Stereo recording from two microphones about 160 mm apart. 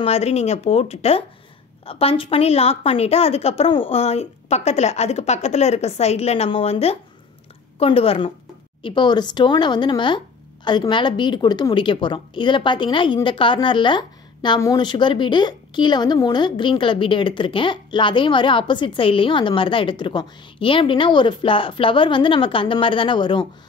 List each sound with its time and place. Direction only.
0.0 s speech: 40° left (ahead or behind)